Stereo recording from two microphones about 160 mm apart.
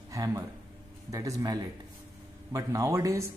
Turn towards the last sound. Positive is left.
turn(degrees=-20)  # may be behind; listen again after turning